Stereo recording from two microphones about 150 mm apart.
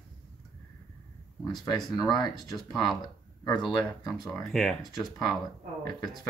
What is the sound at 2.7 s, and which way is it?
Speech, centre (ahead or behind).